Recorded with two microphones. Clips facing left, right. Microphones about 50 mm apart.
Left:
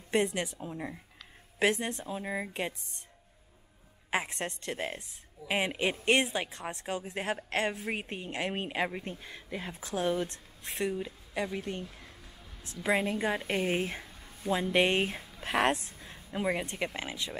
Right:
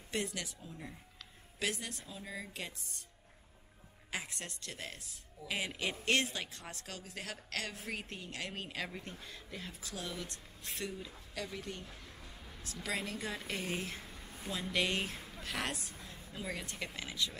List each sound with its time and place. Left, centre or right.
0.1 s a woman's voice: left
4.1 s a woman's voice: left
15.4 s a sound: left
16.3 s a woman's voice: left